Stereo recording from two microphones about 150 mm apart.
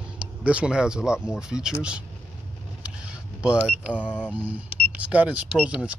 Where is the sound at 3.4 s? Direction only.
10° right (ahead or behind).